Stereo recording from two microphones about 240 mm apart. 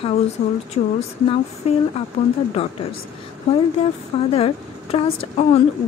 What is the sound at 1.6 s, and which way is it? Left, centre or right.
Speech, left.